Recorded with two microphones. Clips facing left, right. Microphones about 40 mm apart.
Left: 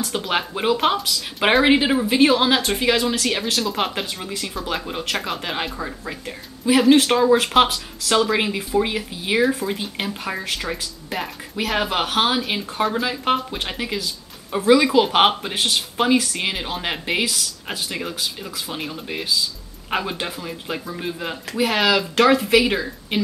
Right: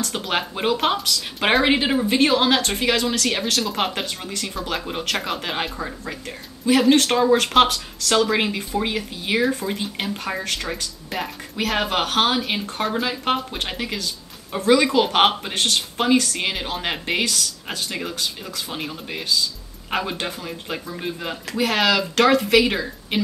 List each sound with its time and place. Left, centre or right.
0.0 s speech: centre